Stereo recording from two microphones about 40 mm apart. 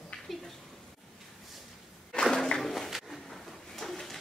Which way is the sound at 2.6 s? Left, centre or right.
Centre.